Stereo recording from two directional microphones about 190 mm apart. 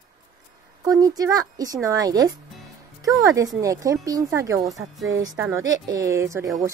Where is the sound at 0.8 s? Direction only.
20° right (ahead or behind).